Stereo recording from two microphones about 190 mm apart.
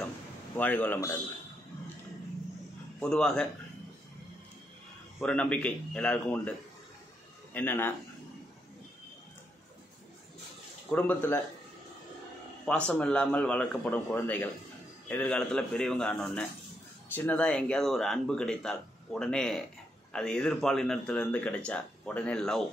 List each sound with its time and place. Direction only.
0.6 s a man's voice: 10° left (ahead or behind)
3.0 s speech: 5° left (ahead or behind)
5.2 s speech: 5° left (ahead or behind)
7.5 s a man's voice: 10° left (ahead or behind)
10.9 s a man's voice: 10° left (ahead or behind)
12.6 s a man's voice: 5° left (ahead or behind)